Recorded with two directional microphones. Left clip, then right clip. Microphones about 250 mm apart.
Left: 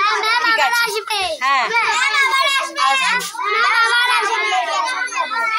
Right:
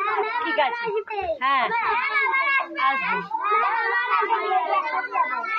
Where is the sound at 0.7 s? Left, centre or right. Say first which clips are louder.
Left 8 dB; left.